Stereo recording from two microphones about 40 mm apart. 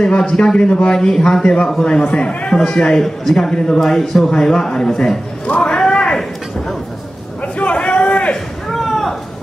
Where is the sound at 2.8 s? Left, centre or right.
Centre.